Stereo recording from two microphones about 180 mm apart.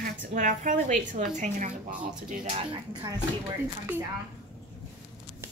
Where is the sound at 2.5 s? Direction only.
25° right (ahead or behind).